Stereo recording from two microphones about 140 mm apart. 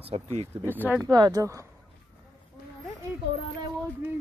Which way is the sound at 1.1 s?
25° right (ahead or behind).